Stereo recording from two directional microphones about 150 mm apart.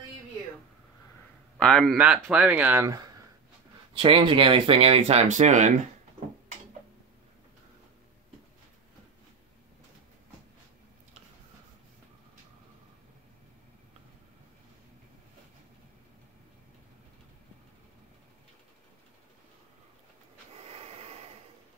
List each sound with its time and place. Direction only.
1.6 s speech: 5° left (ahead or behind)
2.0 s speech: 10° right (ahead or behind); by 3.2 s 25° right (ahead or behind)
3.9 s speech: 35° right (ahead or behind); by 5.7 s 55° right (ahead or behind)
20.6 s snort: 40° right (ahead or behind)